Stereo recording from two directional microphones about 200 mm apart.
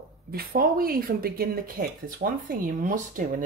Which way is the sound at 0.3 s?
45° right (ahead or behind).